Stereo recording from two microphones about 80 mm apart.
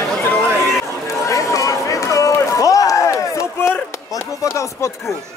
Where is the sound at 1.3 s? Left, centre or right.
Left.